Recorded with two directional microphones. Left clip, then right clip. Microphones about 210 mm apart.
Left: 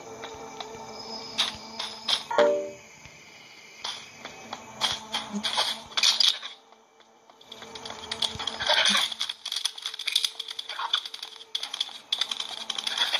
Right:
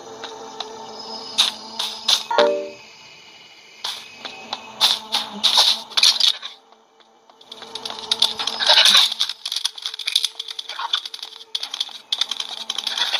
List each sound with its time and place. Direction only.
0.0 s music: 30° right (ahead or behind)
3.8 s music: 30° right (ahead or behind)
7.4 s a sound: 30° right (ahead or behind)